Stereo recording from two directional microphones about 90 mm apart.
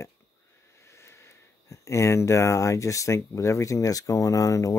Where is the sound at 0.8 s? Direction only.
30° left (ahead or behind).